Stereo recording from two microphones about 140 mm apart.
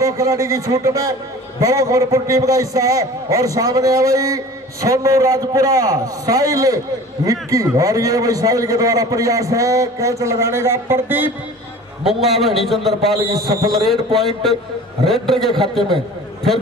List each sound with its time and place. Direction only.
0.0 s a man's voice: 25° right (ahead or behind)
12.0 s a man's voice: centre (ahead or behind)